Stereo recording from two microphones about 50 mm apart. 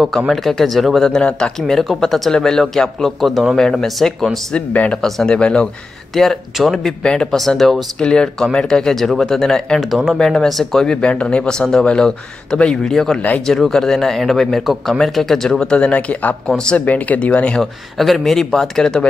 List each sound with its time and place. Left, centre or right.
0.3 s speech: centre
4.6 s speech: left
4.9 s speech: centre
6.1 s speech: centre
7.0 s speech: centre
7.3 s speech: centre
8.0 s speech: centre
15.6 s speech: left
16.4 s speech: centre
16.7 s speech: left
17.6 s speech: centre